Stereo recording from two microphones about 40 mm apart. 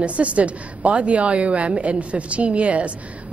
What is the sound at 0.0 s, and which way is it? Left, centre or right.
A woman's voice, right.